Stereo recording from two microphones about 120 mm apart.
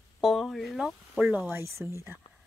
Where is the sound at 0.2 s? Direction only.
Centre (ahead or behind).